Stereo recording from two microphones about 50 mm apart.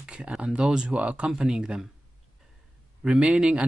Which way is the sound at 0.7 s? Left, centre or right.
Centre.